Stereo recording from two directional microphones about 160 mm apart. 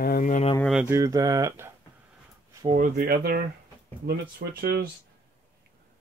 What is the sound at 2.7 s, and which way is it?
Speech, 55° right (ahead or behind).